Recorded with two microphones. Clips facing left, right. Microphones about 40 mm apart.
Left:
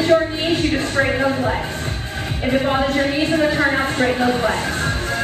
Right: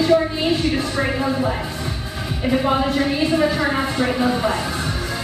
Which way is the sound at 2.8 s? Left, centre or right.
Left.